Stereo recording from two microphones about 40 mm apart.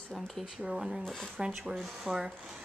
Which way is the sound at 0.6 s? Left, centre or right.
Centre.